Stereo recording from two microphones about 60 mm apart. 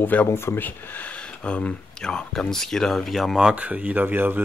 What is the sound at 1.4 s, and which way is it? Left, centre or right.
Speech, centre.